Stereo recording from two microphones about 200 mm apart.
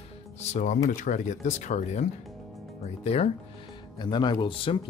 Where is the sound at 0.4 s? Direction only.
35° left (ahead or behind).